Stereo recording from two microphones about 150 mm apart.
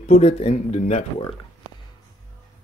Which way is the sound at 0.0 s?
50° left (ahead or behind).